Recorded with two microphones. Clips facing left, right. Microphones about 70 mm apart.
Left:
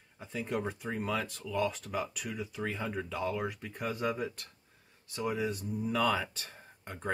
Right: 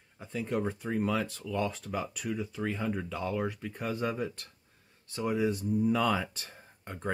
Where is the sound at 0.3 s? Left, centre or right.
Centre.